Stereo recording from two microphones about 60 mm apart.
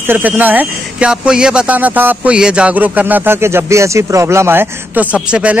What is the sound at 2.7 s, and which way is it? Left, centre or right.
Speech, right.